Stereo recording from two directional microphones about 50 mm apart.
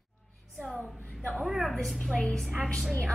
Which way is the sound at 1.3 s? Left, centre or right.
Centre.